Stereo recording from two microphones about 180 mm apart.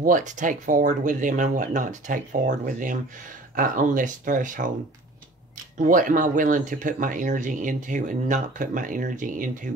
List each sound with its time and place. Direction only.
0.0 s speech: 45° right (ahead or behind)
5.8 s speech: 50° right (ahead or behind)